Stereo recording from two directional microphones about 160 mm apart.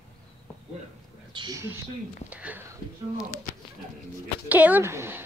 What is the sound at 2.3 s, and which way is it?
Speech, 10° right (ahead or behind).